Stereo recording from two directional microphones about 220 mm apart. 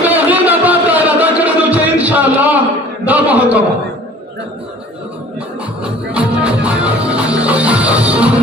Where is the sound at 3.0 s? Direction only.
5° right (ahead or behind).